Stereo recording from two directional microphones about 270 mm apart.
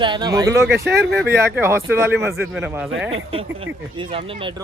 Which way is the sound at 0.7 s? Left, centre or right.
Right.